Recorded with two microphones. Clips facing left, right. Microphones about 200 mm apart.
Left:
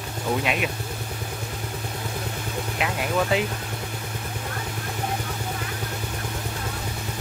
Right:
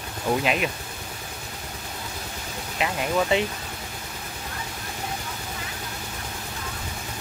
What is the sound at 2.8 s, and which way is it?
Speech, 5° left (ahead or behind).